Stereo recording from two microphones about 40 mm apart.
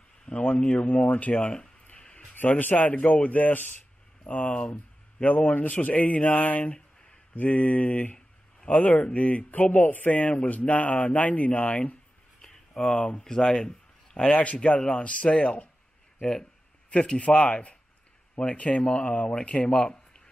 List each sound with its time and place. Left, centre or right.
0.2 s a sound: left
0.7 s speech: left
2.0 s a sound: centre
2.3 s speech: left
4.3 s speech: left
9.5 s speech: left
12.4 s a sound: centre
13.2 s speech: centre
14.8 s speech: centre
15.0 s speech: left